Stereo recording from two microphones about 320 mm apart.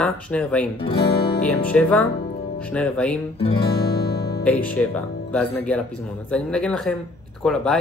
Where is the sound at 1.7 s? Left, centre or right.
Centre.